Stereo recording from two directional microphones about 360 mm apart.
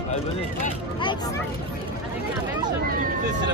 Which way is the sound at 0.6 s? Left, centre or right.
Centre.